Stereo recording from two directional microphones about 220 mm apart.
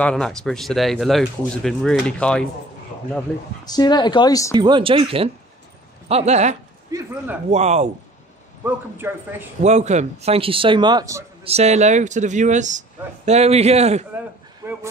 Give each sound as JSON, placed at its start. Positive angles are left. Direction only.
{"t": 0.0, "sound": "speech", "side_deg": 5}
{"t": 3.6, "sound": "speech", "side_deg": 20}
{"t": 4.6, "sound": "speech", "side_deg": -20}
{"t": 6.9, "sound": "speech", "side_deg": -15}
{"t": 7.5, "sound": "speech", "side_deg": -30}
{"t": 8.6, "sound": "a man's voice", "side_deg": -10}
{"t": 9.6, "sound": "speech", "side_deg": -30}
{"t": 11.4, "sound": "speech", "side_deg": -30}
{"t": 14.6, "sound": "a sound", "side_deg": -15}